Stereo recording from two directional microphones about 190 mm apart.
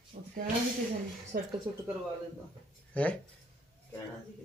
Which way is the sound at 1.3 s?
50° right (ahead or behind).